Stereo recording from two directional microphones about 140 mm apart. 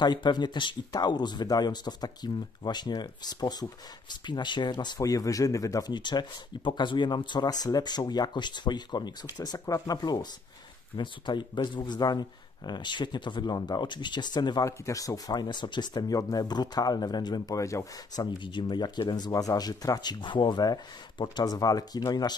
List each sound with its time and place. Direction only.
0.0 s speech: 30° left (ahead or behind)